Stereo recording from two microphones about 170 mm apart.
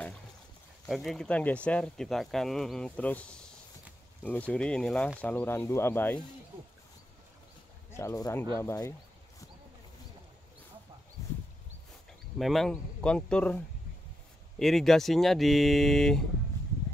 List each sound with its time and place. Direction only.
0.8 s speech: centre (ahead or behind)
7.9 s speech: 15° left (ahead or behind)
12.4 s speech: centre (ahead or behind)
14.6 s speech: centre (ahead or behind)